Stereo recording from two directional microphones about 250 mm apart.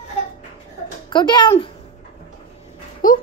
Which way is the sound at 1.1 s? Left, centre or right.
Centre.